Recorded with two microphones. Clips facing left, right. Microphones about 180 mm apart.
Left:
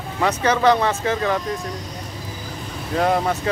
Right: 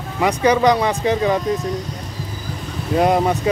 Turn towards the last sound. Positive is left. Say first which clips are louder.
# right 4 dB
turn(degrees=-15)  # may be behind; listen again after turning